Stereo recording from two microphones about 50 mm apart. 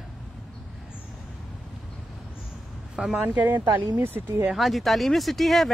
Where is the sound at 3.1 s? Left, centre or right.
Right.